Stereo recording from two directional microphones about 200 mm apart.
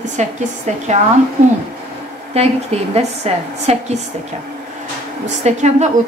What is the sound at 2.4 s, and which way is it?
A woman's voice, 30° right (ahead or behind).